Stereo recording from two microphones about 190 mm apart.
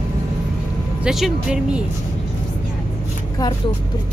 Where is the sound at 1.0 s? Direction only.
Centre (ahead or behind).